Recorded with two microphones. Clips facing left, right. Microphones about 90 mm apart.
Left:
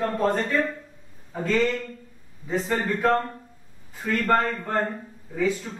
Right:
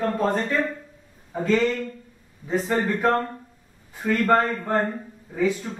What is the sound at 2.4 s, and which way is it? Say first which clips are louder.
A man's voice: right 2 dB; 5° right (ahead or behind).